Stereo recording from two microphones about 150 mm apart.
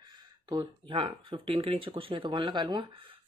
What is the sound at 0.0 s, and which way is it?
Speech, 30° right (ahead or behind).